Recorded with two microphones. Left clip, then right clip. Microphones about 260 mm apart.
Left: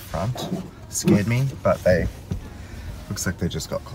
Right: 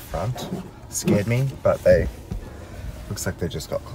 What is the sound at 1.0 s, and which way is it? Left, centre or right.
Speech, centre.